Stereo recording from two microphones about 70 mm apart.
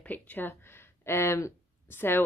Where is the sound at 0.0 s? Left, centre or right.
Left.